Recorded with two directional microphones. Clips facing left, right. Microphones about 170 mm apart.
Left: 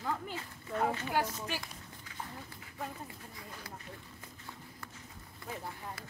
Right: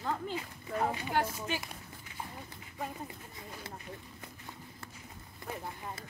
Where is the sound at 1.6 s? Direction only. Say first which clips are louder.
Right 2 dB; 20° right (ahead or behind).